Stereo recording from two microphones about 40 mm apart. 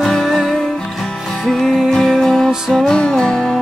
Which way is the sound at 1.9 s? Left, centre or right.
Centre.